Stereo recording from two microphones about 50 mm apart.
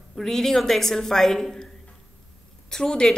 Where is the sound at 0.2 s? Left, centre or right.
Centre.